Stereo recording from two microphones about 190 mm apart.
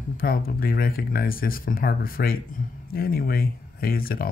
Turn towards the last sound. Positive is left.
turn(degrees=50)  # may be behind; listen again after turning